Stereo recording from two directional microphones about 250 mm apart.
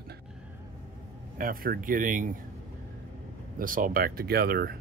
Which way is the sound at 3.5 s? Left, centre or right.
Right.